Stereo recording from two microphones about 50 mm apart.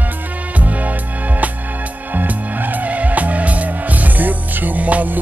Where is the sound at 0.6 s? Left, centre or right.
Right.